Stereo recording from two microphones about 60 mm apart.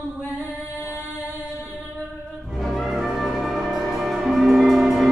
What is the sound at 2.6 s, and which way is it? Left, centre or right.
Music, centre.